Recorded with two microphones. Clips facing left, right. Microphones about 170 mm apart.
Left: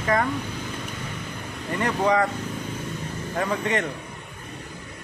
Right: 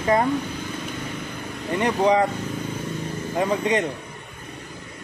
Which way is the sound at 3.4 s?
20° right (ahead or behind).